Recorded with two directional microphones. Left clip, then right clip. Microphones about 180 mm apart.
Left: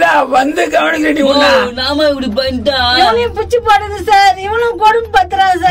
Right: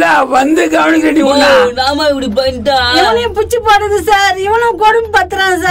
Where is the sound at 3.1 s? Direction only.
50° right (ahead or behind).